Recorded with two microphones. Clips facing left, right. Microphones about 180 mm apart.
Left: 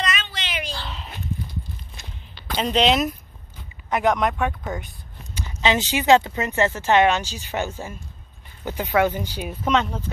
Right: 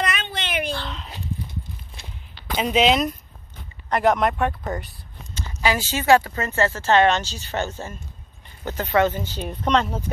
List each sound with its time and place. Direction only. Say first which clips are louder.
0.0 s a sound: right 2 dB; 55° right (ahead or behind)
0.7 s dog: right 3 dB; 10° left (ahead or behind)
1.1 s horse: left 1 dB; 30° right (ahead or behind)
2.6 s speech: right 1 dB; 5° right (ahead or behind)
5.3 s speech: left 1 dB; 20° left (ahead or behind); by 10.0 s centre (ahead or behind)